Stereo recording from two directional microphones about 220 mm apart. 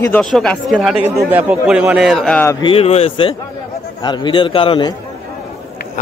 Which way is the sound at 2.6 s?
25° left (ahead or behind).